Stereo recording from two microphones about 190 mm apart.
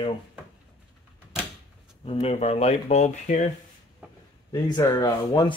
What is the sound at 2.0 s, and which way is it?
Speech, 30° left (ahead or behind).